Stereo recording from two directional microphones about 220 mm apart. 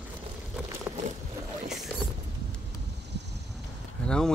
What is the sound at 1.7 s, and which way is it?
Boat, centre (ahead or behind).